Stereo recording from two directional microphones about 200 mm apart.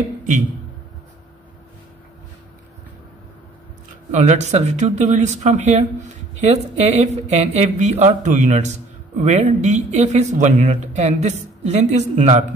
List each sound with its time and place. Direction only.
4.1 s speech: 35° right (ahead or behind)